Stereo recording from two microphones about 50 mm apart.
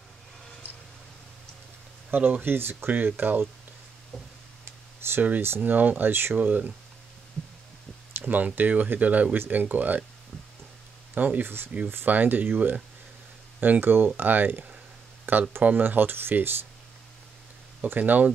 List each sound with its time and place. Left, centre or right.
2.0 s a sound: right
2.4 s speech: right
4.6 s a sound: right
5.6 s speech: right
6.4 s speech: right
7.4 s heart sounds: centre
8.2 s a sound: right
8.5 s speech: right
11.1 s speech: right
11.4 s speech: right
17.8 s speech: right